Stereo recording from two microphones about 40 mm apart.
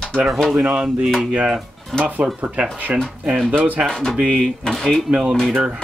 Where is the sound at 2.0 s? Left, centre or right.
Right.